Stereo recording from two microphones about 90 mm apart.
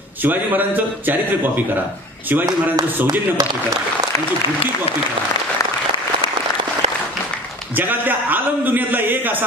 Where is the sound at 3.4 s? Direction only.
40° right (ahead or behind).